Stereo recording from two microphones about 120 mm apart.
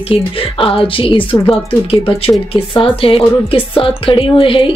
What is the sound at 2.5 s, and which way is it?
Speech, 50° left (ahead or behind).